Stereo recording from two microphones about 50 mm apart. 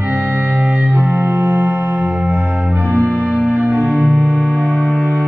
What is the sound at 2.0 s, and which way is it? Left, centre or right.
Music, right.